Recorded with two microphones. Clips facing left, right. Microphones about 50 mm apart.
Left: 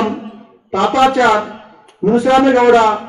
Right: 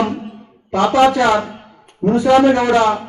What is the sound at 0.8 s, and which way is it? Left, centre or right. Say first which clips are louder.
Speech: even; centre.